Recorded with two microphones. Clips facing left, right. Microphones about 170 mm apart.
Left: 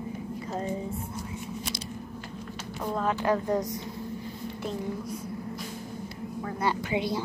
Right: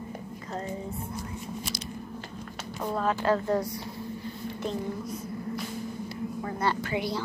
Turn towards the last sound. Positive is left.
turn(degrees=20)  # may be behind; listen again after turning